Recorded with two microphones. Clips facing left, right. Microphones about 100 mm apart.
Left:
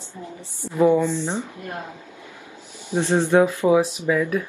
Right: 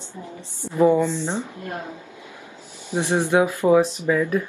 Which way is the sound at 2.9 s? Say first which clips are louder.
Left 2 dB; 15° right (ahead or behind).